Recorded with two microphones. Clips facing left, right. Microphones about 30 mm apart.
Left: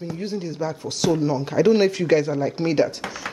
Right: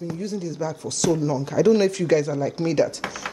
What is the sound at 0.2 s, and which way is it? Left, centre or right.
Speech, left.